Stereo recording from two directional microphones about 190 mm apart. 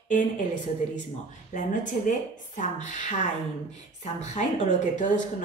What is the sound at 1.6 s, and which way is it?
A woman's voice, 45° left (ahead or behind).